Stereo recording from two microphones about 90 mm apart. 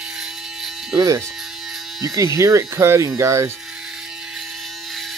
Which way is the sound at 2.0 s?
35° right (ahead or behind).